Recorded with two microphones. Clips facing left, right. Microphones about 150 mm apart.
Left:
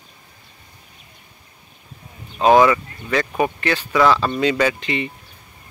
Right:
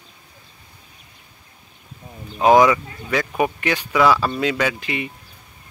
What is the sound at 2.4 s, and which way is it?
Speech, 10° right (ahead or behind).